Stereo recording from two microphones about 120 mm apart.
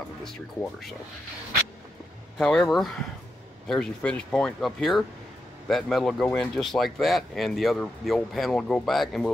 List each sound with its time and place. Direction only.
0.2 s speech: 5° left (ahead or behind)
2.3 s speech: centre (ahead or behind)